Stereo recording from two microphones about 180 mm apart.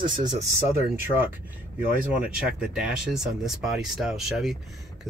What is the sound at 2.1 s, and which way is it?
Speech, 5° right (ahead or behind).